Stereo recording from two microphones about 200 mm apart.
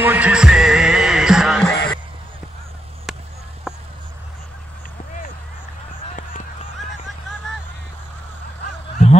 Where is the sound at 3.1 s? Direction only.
Centre (ahead or behind).